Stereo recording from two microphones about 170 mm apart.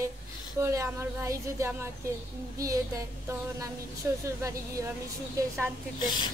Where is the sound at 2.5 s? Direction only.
20° right (ahead or behind).